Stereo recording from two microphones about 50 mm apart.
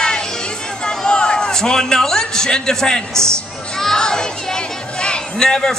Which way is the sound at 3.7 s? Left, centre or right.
Centre.